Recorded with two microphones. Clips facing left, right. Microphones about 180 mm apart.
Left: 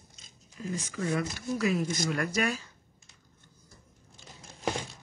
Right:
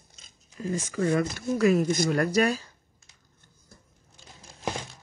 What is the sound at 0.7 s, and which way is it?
Speech, 50° right (ahead or behind).